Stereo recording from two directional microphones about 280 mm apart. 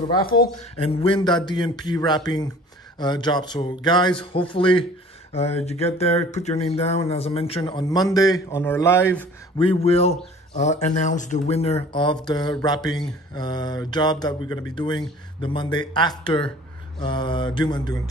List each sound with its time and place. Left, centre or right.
0.2 s speech: left
0.7 s speech: centre
9.6 s speech: centre